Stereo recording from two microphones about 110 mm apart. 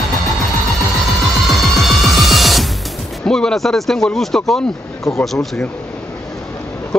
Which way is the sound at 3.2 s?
5° left (ahead or behind).